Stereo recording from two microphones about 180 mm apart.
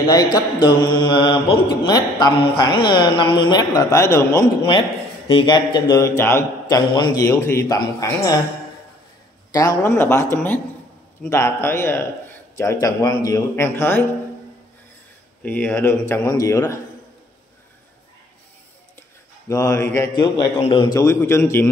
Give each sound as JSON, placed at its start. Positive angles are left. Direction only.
{"t": 0.1, "sound": "a man's voice", "side_deg": 20}
{"t": 9.5, "sound": "a man's voice", "side_deg": 20}
{"t": 15.4, "sound": "a man's voice", "side_deg": 10}
{"t": 19.5, "sound": "a man's voice", "side_deg": 20}